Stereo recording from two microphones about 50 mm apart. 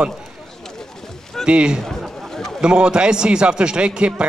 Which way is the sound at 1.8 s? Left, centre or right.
Centre.